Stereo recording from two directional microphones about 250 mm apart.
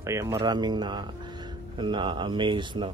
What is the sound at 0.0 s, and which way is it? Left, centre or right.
Speech, centre.